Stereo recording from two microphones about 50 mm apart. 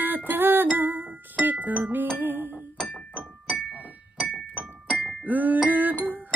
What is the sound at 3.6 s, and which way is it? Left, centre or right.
Music, right.